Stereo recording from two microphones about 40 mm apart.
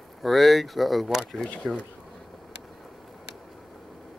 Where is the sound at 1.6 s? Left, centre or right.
Right.